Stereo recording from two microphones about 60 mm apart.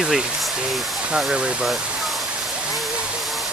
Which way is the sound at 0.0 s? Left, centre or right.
Centre.